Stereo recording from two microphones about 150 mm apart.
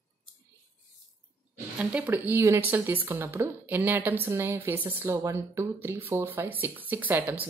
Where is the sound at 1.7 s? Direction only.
10° right (ahead or behind).